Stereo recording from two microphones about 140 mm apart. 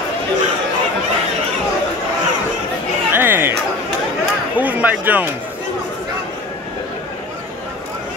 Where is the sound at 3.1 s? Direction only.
15° right (ahead or behind).